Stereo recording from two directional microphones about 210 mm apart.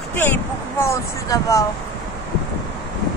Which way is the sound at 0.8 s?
15° left (ahead or behind).